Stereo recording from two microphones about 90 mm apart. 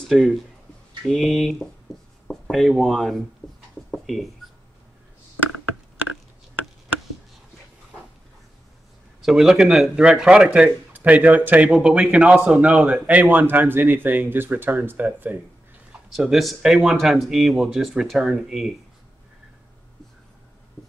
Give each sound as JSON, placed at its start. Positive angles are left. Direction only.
{"t": 0.1, "sound": "speech", "side_deg": 0}
{"t": 2.2, "sound": "writing", "side_deg": 5}
{"t": 2.8, "sound": "speech", "side_deg": 5}
{"t": 3.9, "sound": "a sound", "side_deg": 0}
{"t": 9.2, "sound": "speech", "side_deg": -5}
{"t": 16.1, "sound": "speech", "side_deg": 0}